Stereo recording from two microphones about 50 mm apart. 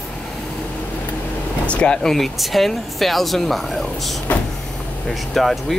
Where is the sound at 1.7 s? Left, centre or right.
Left.